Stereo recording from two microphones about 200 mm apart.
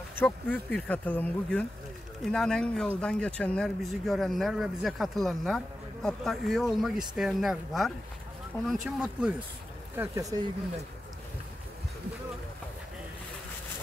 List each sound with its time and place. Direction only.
0.1 s speech: 10° left (ahead or behind)
9.9 s speech: 15° right (ahead or behind)